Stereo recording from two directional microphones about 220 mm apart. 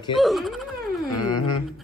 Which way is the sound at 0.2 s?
Centre (ahead or behind).